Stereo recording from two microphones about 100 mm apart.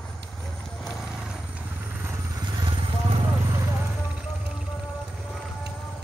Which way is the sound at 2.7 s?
65° right (ahead or behind).